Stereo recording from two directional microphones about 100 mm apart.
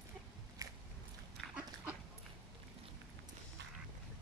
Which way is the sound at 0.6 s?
35° right (ahead or behind).